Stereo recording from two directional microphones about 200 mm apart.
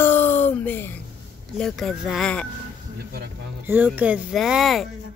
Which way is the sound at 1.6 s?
Centre (ahead or behind).